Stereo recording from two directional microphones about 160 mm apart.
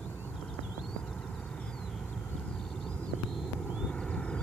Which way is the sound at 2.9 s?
Centre (ahead or behind).